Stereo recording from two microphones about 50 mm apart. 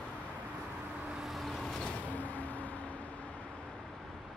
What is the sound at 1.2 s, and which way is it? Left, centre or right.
Vehicle, centre.